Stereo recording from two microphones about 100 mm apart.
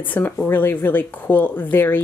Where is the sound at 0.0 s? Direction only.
15° left (ahead or behind).